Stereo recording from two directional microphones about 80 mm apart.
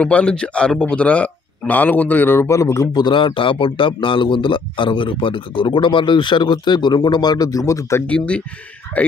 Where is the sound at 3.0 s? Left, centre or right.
Left.